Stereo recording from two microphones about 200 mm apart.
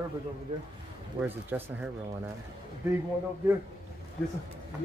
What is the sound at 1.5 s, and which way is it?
Speech, 10° right (ahead or behind).